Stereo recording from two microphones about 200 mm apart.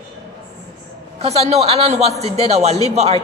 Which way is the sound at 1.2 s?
30° right (ahead or behind).